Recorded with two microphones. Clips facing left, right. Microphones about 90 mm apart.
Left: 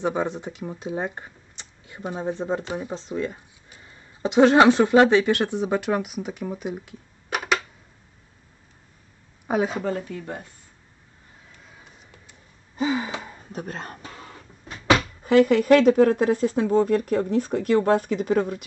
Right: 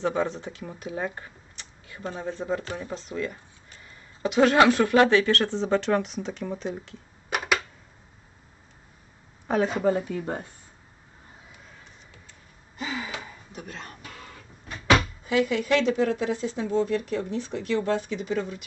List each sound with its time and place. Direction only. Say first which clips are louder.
0.0 s speech: left 1 dB; 15° left (ahead or behind)
7.2 s a sound: left 1 dB; 5° right (ahead or behind)
9.5 s speech: left 1 dB; 10° left (ahead or behind)
9.8 s speech: right 3 dB; 10° right (ahead or behind)
10.1 s speech: right 3 dB; 30° right (ahead or behind)
12.8 s gasp: left 8 dB; 35° left (ahead or behind)
14.0 s cough: left 3 dB; 25° left (ahead or behind)
15.2 s speech: left 12 dB; 50° left (ahead or behind)